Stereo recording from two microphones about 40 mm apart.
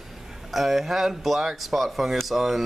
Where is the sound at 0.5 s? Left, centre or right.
Centre.